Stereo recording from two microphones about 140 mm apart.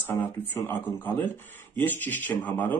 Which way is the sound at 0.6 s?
15° left (ahead or behind).